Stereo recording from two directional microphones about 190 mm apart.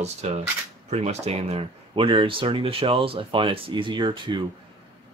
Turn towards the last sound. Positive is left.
turn(degrees=-25)  # may be behind; listen again after turning